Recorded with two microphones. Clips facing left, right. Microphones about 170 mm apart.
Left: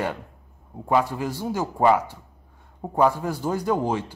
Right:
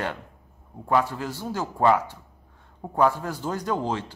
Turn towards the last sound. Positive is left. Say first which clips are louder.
# left 3 dB
turn(degrees=10)  # may be behind; listen again after turning